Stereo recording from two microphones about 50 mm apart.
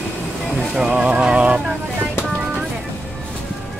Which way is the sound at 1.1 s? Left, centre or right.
Right.